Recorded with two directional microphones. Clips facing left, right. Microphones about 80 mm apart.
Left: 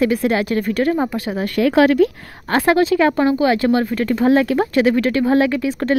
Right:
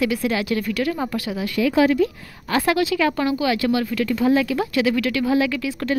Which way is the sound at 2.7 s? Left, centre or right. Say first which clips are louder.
Left 6 dB; left.